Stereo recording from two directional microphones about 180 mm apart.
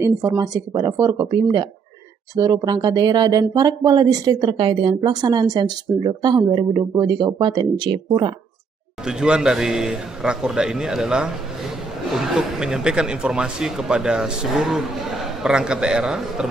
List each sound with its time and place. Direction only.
0.7 s speech: 20° right (ahead or behind)
9.0 s a man's voice: 5° right (ahead or behind)